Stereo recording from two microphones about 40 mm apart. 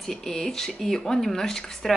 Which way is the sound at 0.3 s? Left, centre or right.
Centre.